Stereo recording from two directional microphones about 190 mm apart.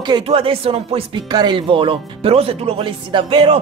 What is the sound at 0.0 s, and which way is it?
Speech, 25° right (ahead or behind).